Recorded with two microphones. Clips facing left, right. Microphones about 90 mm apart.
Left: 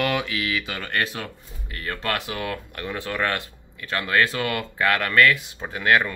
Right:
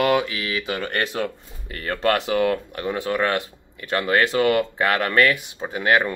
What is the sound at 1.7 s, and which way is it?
Speech, 30° right (ahead or behind).